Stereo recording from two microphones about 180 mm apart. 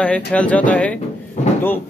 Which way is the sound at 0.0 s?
5° left (ahead or behind).